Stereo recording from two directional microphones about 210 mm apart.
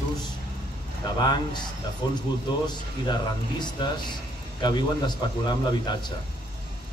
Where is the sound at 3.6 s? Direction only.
20° left (ahead or behind).